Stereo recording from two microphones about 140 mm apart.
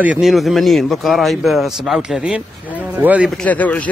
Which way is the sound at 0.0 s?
5° right (ahead or behind).